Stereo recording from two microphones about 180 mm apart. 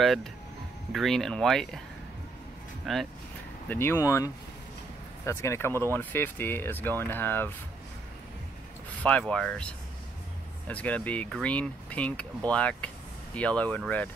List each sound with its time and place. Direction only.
0.0 s speech: centre (ahead or behind)
2.8 s speech: centre (ahead or behind)
3.6 s speech: 15° left (ahead or behind)
9.0 s speech: 5° left (ahead or behind)